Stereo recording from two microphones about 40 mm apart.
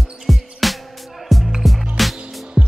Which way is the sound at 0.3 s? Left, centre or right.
Centre.